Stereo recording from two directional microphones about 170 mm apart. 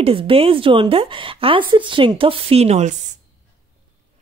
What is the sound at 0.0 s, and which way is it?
Speech, 35° right (ahead or behind).